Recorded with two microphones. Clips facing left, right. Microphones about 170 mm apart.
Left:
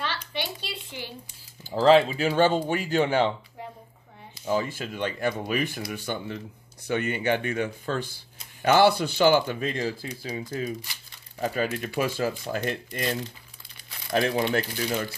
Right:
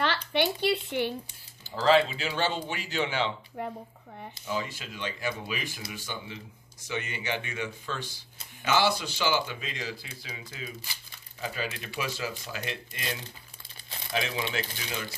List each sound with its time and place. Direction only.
0.0 s speech: 60° right (ahead or behind)
1.9 s speech: 45° left (ahead or behind)
3.6 s speech: 60° right (ahead or behind)
4.5 s speech: 50° left (ahead or behind)